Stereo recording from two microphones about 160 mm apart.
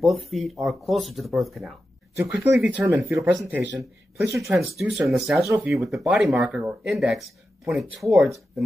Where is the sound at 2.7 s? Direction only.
15° right (ahead or behind).